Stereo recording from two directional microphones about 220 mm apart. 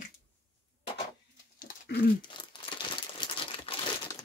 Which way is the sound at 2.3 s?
20° left (ahead or behind).